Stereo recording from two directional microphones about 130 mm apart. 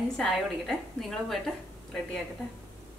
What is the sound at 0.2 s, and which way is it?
A woman's voice, centre (ahead or behind).